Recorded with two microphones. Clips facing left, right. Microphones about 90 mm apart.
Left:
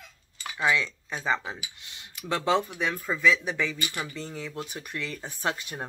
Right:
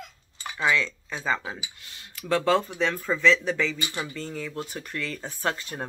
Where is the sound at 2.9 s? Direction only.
10° left (ahead or behind).